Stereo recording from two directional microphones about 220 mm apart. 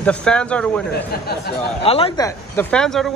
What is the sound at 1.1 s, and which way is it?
Speech, 45° left (ahead or behind).